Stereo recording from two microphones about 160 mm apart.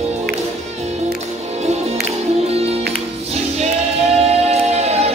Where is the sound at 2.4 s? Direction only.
40° right (ahead or behind).